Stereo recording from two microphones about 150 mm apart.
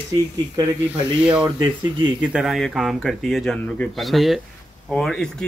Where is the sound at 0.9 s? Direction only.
10° right (ahead or behind).